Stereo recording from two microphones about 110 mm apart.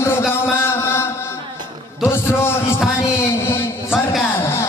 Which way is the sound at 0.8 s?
25° left (ahead or behind).